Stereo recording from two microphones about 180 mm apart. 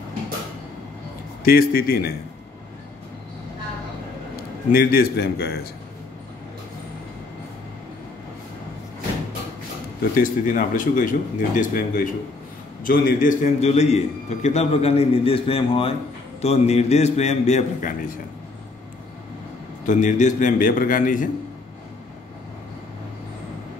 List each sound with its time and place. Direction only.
1.4 s a man's voice: 55° left (ahead or behind)
4.4 s a man's voice: 55° left (ahead or behind)
10.1 s a man's voice: 50° left (ahead or behind)
19.9 s speech: 45° left (ahead or behind)